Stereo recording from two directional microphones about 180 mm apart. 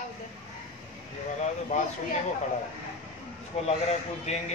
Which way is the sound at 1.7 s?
35° left (ahead or behind).